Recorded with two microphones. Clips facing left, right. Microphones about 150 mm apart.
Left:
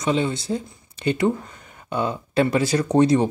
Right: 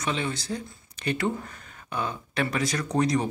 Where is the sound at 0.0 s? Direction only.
25° left (ahead or behind).